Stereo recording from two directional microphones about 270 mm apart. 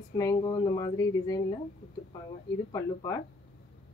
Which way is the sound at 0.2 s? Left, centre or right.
Centre.